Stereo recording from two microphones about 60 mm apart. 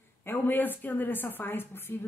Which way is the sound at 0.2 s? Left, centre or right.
Left.